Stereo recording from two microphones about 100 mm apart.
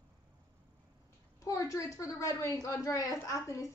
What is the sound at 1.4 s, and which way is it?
A woman's voice, 35° left (ahead or behind).